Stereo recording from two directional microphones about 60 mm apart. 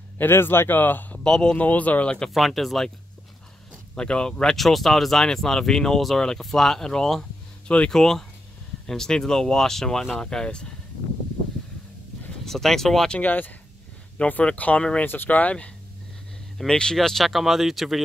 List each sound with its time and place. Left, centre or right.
0.2 s speech: left
1.2 s speech: centre
1.6 s speech: left
2.3 s speech: centre
3.9 s speech: centre
12.4 s speech: centre
13.2 s speech: left
15.0 s speech: left
16.5 s speech: centre